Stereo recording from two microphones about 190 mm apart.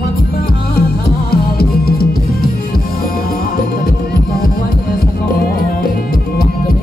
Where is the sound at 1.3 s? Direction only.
55° left (ahead or behind).